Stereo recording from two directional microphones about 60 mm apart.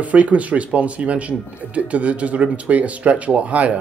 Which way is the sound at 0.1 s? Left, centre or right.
Right.